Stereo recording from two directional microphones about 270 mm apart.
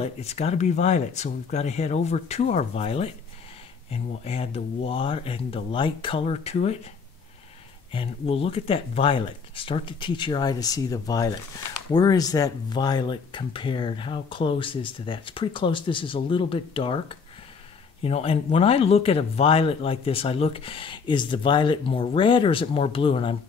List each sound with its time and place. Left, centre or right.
0.0 s speech: left
7.9 s speech: centre